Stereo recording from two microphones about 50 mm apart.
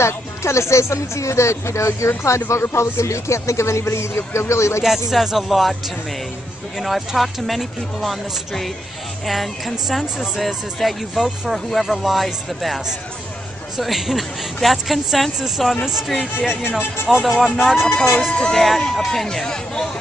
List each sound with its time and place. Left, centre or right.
0.0 s speech: left
4.8 s speech: centre
6.8 s speech: centre
17.2 s speech: centre
17.7 s speech: centre